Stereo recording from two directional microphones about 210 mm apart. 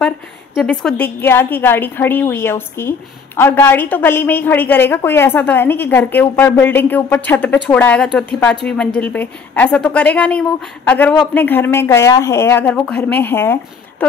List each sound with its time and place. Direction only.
0.6 s a woman's voice: 5° left (ahead or behind)